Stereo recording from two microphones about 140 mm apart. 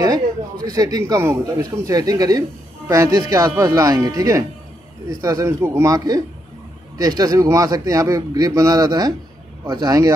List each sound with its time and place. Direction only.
0.7 s a man's voice: 25° right (ahead or behind)